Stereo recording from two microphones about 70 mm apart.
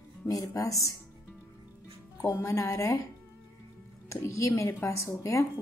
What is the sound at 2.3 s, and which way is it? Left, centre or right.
Speech, left.